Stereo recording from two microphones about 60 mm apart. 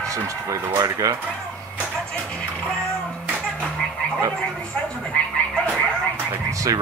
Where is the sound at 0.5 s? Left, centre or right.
Right.